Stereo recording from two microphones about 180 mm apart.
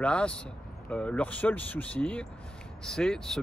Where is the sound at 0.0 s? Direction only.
5° left (ahead or behind).